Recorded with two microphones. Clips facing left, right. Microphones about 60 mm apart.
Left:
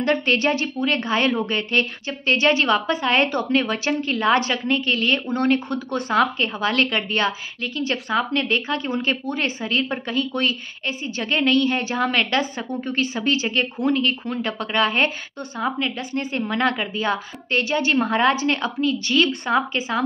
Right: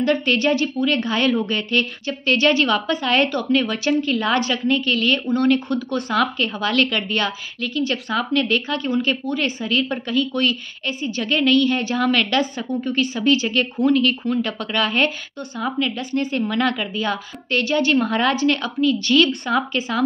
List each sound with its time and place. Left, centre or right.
0.0 s a woman's voice: left